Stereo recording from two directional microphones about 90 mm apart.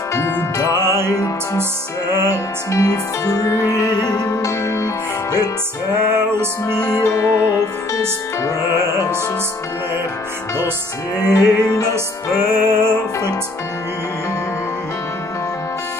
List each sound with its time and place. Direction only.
0.1 s music: 30° left (ahead or behind)
0.7 s music: 25° right (ahead or behind)
1.1 s music: 40° left (ahead or behind)
5.9 s music: 25° right (ahead or behind)
6.8 s music: 40° left (ahead or behind)
8.7 s music: 30° right (ahead or behind)
11.2 s music: 45° left (ahead or behind)
11.9 s music: 25° right (ahead or behind)